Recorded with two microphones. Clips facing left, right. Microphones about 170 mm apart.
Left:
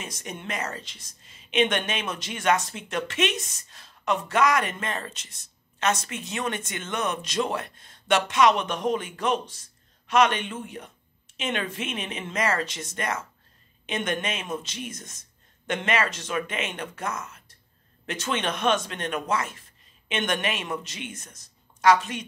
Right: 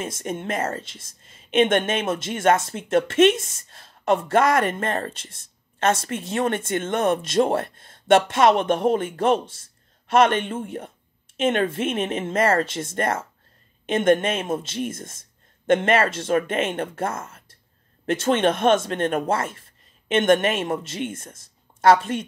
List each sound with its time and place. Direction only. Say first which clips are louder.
0.2 s speech: right 6 dB; 50° right (ahead or behind)